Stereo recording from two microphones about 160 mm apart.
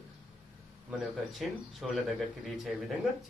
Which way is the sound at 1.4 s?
Centre (ahead or behind).